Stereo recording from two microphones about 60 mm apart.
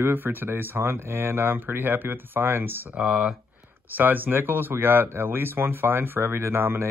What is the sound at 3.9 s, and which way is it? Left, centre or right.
Speech, right.